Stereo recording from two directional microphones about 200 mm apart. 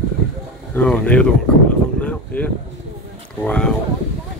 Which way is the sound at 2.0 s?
5° left (ahead or behind).